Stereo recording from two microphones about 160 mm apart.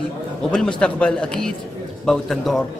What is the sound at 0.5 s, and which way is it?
A man's voice, 5° left (ahead or behind).